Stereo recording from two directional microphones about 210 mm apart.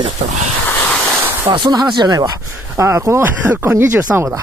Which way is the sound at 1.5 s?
20° right (ahead or behind).